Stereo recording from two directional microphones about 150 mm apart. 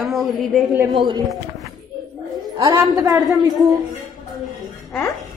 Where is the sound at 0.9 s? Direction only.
30° right (ahead or behind).